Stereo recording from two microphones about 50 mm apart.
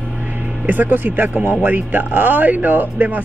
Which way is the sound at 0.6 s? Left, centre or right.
Right.